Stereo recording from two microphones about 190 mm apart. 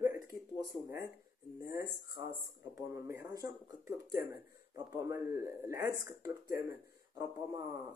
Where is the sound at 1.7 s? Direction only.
20° right (ahead or behind).